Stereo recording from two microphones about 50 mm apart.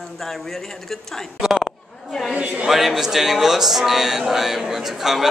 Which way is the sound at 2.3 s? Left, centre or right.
Right.